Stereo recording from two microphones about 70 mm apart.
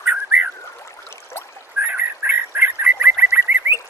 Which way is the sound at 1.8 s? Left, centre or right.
Right.